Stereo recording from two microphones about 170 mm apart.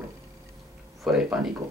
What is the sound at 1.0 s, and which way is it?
Speech, 5° right (ahead or behind).